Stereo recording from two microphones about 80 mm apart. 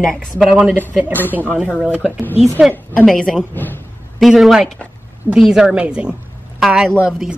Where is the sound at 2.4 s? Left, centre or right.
Centre.